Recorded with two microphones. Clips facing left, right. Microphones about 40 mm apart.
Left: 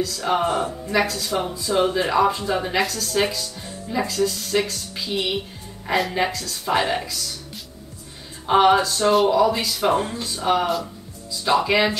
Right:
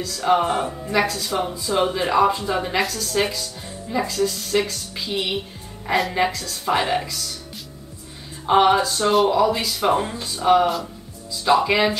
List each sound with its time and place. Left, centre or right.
0.0 s speech: centre
0.5 s speech: right
0.8 s speech: centre